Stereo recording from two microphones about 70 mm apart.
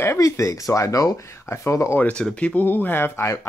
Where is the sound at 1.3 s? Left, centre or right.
Left.